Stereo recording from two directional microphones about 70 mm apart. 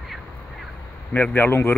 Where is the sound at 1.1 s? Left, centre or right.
Left.